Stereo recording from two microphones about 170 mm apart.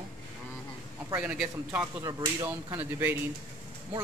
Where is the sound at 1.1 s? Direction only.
5° right (ahead or behind).